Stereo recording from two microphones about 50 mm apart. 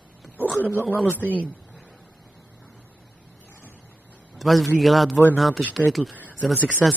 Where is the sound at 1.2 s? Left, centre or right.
Right.